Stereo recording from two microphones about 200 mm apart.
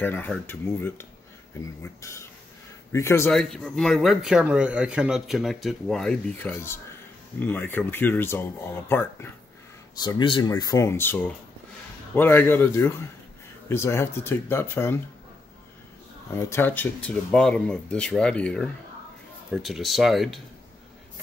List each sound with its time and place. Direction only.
0.0 s speech: 10° left (ahead or behind)
3.3 s speech: centre (ahead or behind)
16.3 s speech: 15° left (ahead or behind)